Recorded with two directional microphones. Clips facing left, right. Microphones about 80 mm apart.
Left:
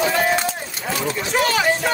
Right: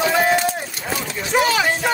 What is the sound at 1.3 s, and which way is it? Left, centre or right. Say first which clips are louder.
Speech: right 2 dB; centre.